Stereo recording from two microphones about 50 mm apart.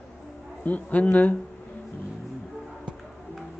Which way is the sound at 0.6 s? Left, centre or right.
Left.